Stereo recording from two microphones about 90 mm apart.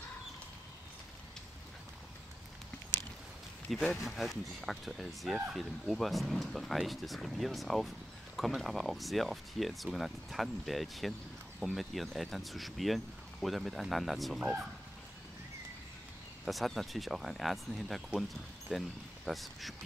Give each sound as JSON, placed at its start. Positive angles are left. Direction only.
{"t": 3.7, "sound": "speech", "side_deg": 0}
{"t": 16.4, "sound": "speech", "side_deg": 0}